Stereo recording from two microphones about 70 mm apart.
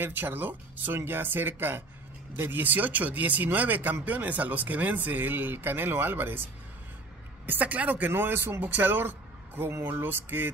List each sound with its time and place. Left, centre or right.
0.0 s speech: right
7.4 s speech: right